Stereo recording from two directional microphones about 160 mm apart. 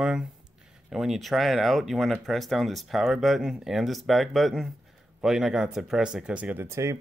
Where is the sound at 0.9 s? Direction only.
Centre (ahead or behind).